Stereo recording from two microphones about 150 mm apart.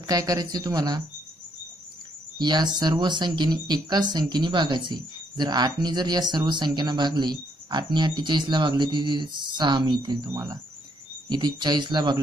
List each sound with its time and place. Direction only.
0.0 s speech: 25° right (ahead or behind)
2.3 s speech: 30° right (ahead or behind)